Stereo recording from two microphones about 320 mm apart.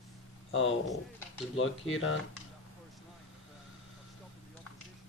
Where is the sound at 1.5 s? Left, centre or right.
Left.